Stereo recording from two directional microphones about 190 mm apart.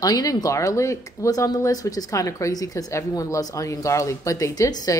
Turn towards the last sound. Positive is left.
turn(degrees=20)  # may be behind; listen again after turning